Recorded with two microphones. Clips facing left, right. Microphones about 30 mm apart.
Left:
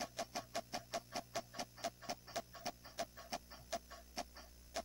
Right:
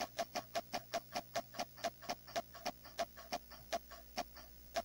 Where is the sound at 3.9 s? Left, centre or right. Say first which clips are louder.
Even; centre.